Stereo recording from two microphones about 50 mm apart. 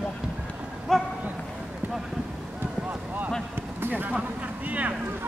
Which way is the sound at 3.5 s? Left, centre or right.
Right.